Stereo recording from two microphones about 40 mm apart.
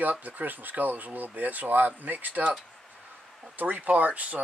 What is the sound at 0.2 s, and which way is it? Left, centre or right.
Speech, right.